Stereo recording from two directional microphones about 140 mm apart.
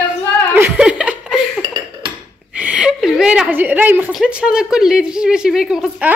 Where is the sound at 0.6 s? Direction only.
10° right (ahead or behind).